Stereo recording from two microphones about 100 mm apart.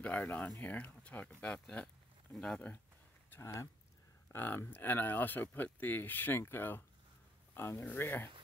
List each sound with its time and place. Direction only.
0.0 s speech: 15° left (ahead or behind)
3.3 s speech: 25° left (ahead or behind)